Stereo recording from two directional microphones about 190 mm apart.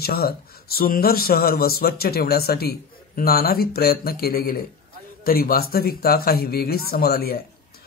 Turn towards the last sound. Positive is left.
turn(degrees=55)  # may be behind; listen again after turning